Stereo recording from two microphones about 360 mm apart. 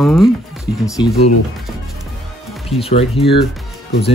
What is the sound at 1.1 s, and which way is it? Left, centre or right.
Speech, left.